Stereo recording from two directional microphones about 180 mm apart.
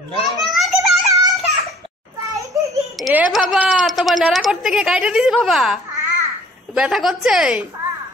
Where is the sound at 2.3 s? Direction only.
20° right (ahead or behind).